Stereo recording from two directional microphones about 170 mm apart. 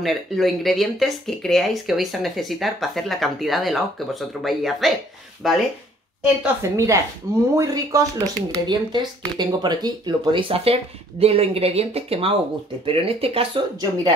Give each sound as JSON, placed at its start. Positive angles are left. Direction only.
{"t": 0.0, "sound": "speech", "side_deg": 0}
{"t": 6.4, "sound": "a woman's voice", "side_deg": -15}